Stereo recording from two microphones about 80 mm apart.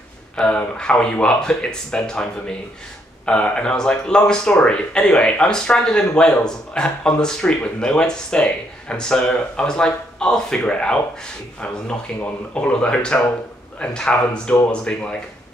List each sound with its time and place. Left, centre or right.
0.4 s speech: centre
12.2 s speech: centre